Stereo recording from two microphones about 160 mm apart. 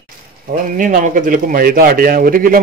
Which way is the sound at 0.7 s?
55° right (ahead or behind).